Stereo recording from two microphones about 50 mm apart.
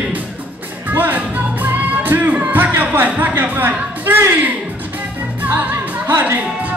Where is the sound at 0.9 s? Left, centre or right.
Right.